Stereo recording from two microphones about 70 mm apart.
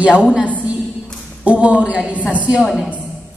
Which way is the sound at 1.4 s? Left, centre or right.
Centre.